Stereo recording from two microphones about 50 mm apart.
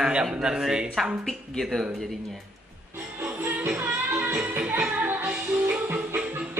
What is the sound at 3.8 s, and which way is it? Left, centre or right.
Music, right.